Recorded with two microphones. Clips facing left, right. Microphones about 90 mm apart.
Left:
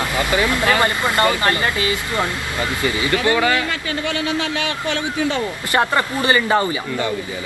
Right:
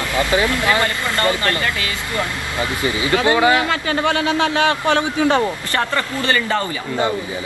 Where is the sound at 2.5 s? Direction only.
20° right (ahead or behind).